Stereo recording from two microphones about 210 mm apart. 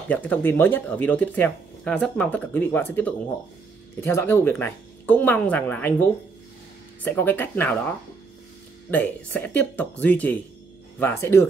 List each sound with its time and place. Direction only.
0.1 s speech: 10° left (ahead or behind)
8.9 s speech: 10° left (ahead or behind)